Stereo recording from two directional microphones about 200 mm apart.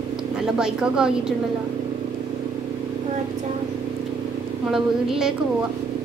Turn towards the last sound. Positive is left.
turn(degrees=0)  # may be behind; listen again after turning